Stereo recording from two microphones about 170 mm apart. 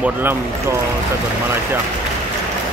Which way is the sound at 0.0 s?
10° right (ahead or behind).